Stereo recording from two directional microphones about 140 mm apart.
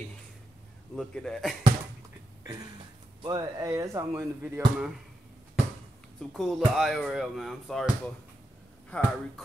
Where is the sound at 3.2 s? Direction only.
30° right (ahead or behind).